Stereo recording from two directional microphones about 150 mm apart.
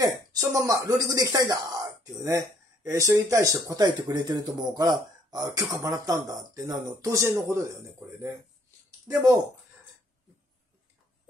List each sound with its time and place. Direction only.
0.0 s speech: 25° right (ahead or behind)